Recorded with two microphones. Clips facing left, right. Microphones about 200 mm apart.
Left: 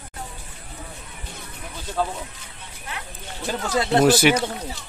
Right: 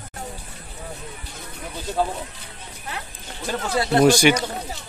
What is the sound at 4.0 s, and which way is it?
Speech, 5° left (ahead or behind).